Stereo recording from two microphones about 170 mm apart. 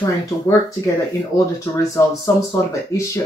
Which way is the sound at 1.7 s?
15° left (ahead or behind).